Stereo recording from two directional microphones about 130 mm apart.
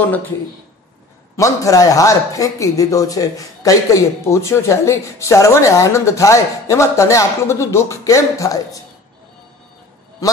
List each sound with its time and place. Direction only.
1.3 s speech: 25° left (ahead or behind)